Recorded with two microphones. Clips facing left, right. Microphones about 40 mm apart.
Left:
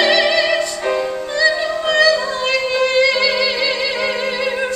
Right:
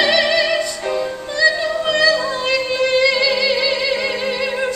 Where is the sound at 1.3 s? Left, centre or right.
Centre.